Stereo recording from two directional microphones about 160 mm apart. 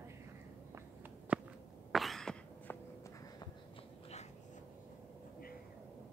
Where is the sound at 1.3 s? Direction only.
10° right (ahead or behind).